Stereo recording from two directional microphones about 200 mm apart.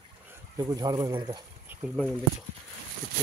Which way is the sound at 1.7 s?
10° right (ahead or behind).